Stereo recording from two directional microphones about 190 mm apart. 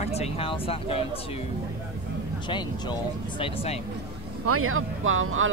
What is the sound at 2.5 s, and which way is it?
Speech, 25° left (ahead or behind).